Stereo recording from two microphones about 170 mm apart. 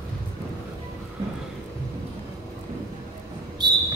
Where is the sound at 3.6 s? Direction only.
25° right (ahead or behind).